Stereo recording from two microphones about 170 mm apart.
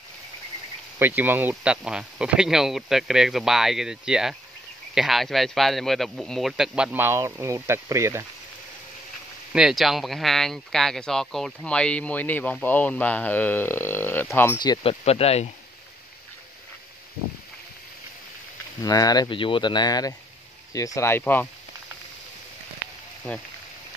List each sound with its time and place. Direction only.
0.9 s speech: 10° right (ahead or behind)
9.5 s speech: 5° right (ahead or behind); by 14.6 s 10° left (ahead or behind)
14.6 s speech: 30° left (ahead or behind)
18.8 s speech: 20° left (ahead or behind)